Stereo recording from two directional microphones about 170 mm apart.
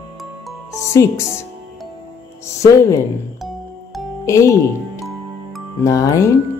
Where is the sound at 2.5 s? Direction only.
20° left (ahead or behind).